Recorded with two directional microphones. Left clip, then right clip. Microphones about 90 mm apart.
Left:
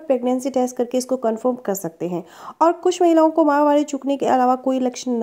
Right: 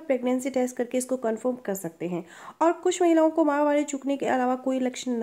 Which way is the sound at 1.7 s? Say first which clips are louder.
Left 7 dB; 30° left (ahead or behind).